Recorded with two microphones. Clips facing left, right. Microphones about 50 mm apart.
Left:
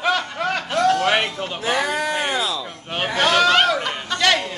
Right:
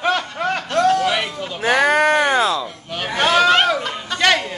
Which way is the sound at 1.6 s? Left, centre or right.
Right.